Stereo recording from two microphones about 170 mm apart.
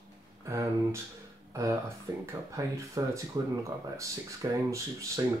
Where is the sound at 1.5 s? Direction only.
20° right (ahead or behind).